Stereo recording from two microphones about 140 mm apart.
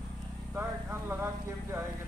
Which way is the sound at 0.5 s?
15° right (ahead or behind).